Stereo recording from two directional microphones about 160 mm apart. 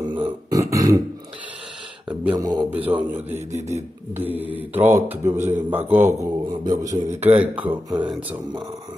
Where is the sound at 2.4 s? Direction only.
25° right (ahead or behind).